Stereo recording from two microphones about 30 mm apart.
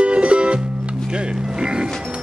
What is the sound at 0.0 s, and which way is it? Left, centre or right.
Music, right.